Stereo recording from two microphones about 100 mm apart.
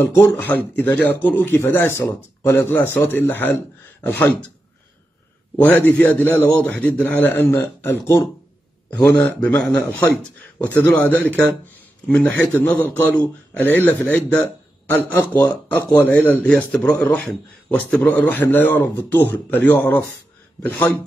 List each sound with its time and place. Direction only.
0.0 s speech: 25° left (ahead or behind)
5.6 s a man's voice: 15° left (ahead or behind)